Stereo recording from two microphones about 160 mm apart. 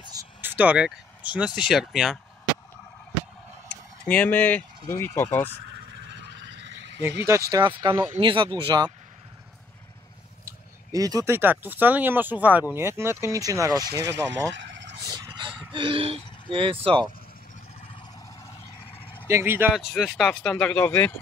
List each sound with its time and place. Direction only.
0.4 s speech: 10° right (ahead or behind)
4.0 s speech: 10° left (ahead or behind)
6.0 s fowl: 90° right
7.5 s speech: 30° right (ahead or behind)
10.4 s speech: 20° right (ahead or behind)
13.9 s speech: 90° right
15.0 s a sound: 25° right (ahead or behind)
15.7 s speech: 35° right (ahead or behind)
18.9 s fowl: 35° left (ahead or behind)
19.2 s speech: 15° right (ahead or behind); by 21.1 s 10° left (ahead or behind)